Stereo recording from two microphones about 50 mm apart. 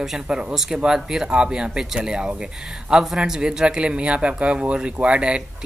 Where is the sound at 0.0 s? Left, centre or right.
Centre.